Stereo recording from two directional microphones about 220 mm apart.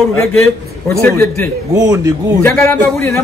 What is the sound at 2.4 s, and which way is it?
Speech, 10° left (ahead or behind).